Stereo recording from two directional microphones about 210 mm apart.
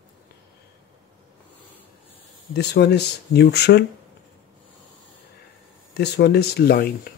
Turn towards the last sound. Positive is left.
turn(degrees=50)  # may be behind; listen again after turning